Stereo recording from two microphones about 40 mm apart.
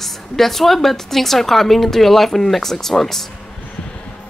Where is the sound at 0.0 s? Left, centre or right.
Centre.